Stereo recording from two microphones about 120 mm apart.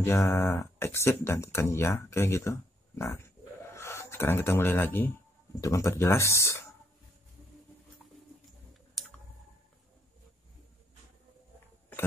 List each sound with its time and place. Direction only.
0.0 s speech: 25° left (ahead or behind)
5.6 s speech: 25° left (ahead or behind)
9.0 s clicking: centre (ahead or behind)